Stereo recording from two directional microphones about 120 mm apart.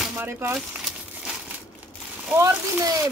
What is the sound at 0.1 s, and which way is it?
Speech, 15° right (ahead or behind).